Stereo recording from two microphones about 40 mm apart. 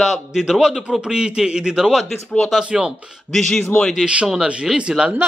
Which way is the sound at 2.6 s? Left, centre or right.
Right.